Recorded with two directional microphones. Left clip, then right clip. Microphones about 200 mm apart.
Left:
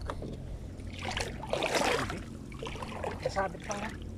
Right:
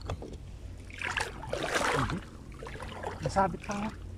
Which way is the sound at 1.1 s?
Centre (ahead or behind).